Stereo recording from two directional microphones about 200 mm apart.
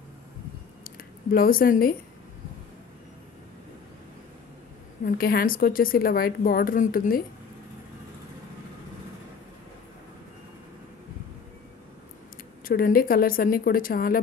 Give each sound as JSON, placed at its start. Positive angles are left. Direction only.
{"t": 0.9, "sound": "speech", "side_deg": 45}
{"t": 5.0, "sound": "a woman's voice", "side_deg": 45}
{"t": 12.6, "sound": "a woman's voice", "side_deg": 45}